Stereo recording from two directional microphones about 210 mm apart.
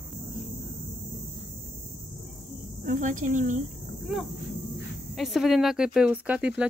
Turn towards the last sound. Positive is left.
turn(degrees=-5)  # may be behind; listen again after turning